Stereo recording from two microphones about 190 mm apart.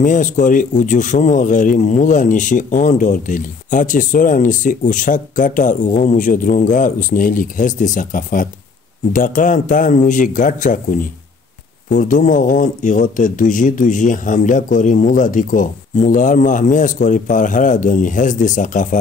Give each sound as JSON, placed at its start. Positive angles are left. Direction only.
{"t": 0.0, "sound": "speech", "side_deg": 40}